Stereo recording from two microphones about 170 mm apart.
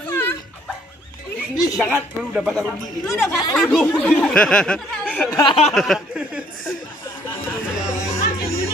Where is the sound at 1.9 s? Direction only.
5° right (ahead or behind); by 5.4 s 10° left (ahead or behind).